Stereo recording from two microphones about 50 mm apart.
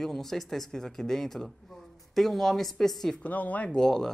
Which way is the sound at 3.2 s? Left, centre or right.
Left.